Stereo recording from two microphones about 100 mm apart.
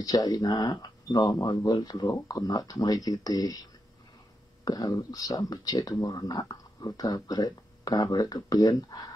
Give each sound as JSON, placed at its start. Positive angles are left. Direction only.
{"t": 0.0, "sound": "speech", "side_deg": 45}
{"t": 1.3, "sound": "speech", "side_deg": 50}
{"t": 4.6, "sound": "speech", "side_deg": 40}